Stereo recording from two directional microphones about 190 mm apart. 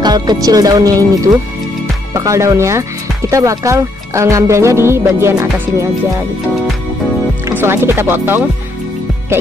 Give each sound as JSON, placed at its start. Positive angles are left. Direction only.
{"t": 0.0, "sound": "speech", "side_deg": -20}
{"t": 7.4, "sound": "speech", "side_deg": -10}